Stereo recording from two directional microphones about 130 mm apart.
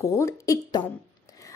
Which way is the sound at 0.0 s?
25° left (ahead or behind).